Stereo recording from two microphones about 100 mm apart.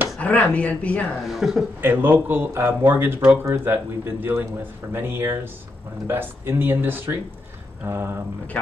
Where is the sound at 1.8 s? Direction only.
20° right (ahead or behind).